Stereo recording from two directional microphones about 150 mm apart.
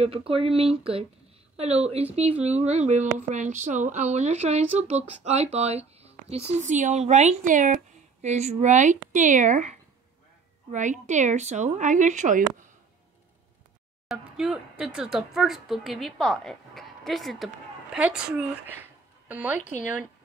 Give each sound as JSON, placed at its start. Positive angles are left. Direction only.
{"t": 0.0, "sound": "speech", "side_deg": -40}
{"t": 14.0, "sound": "a woman's voice", "side_deg": -5}